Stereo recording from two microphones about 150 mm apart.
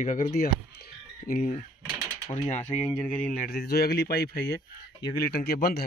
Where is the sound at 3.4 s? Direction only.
90° left.